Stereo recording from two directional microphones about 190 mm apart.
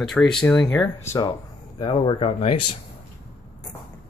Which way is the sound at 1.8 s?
25° left (ahead or behind).